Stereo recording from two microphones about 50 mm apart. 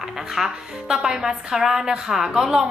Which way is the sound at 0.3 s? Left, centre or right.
Centre.